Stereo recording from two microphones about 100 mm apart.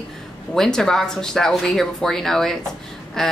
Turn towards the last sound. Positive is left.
turn(degrees=5)  # may be behind; listen again after turning